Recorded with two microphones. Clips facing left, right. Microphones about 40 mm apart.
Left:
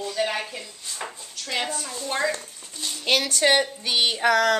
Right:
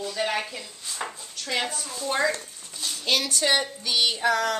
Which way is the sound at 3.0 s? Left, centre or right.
Left.